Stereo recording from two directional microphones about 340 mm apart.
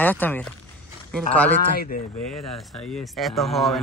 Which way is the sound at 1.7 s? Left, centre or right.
Left.